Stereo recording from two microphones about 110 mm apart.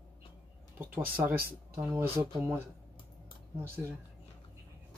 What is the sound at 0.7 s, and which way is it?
Speech, 20° right (ahead or behind).